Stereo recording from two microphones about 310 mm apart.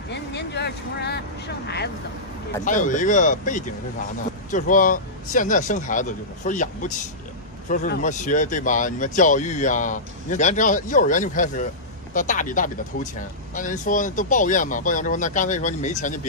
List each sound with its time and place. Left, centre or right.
0.1 s vehicle: left
2.6 s speech: left